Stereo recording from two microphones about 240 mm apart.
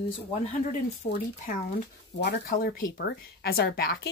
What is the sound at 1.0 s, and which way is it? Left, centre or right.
A woman's voice, left.